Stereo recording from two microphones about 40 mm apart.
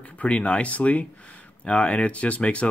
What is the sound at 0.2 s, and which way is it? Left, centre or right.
Speech, left.